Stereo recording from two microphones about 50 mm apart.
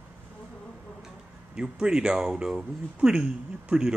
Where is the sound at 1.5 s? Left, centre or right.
Centre.